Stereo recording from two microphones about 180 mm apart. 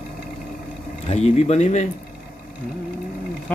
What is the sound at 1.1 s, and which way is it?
Speech, 35° left (ahead or behind).